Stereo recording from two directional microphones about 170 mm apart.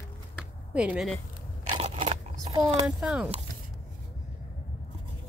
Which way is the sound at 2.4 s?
20° right (ahead or behind).